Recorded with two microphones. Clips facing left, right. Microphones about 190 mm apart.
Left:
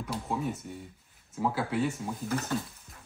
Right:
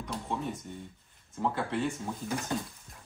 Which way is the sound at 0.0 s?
5° left (ahead or behind).